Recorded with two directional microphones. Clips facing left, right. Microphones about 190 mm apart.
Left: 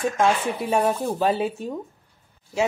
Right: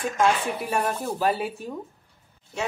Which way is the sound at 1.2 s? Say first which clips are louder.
Left 3 dB; 25° left (ahead or behind).